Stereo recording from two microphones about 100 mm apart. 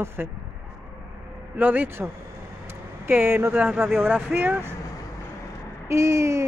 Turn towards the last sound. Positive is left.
turn(degrees=-30)  # may be behind; listen again after turning